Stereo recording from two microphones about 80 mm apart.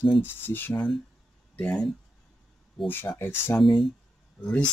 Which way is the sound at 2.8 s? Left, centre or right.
Left.